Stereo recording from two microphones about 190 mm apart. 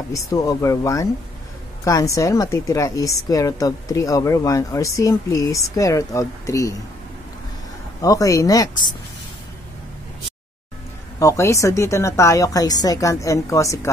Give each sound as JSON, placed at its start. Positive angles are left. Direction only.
{"t": 0.1, "sound": "a woman's voice", "side_deg": 20}
{"t": 8.0, "sound": "speech", "side_deg": 20}
{"t": 11.1, "sound": "a woman's voice", "side_deg": 15}